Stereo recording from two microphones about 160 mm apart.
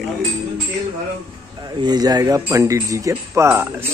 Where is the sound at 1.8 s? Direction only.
25° right (ahead or behind).